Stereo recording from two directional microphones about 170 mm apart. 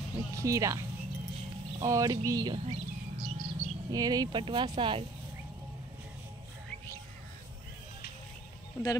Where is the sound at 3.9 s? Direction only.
20° right (ahead or behind).